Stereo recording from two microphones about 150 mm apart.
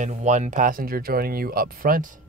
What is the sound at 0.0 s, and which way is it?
Speech, 55° right (ahead or behind).